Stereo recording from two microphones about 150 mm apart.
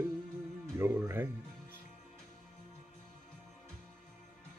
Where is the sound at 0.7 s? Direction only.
15° right (ahead or behind).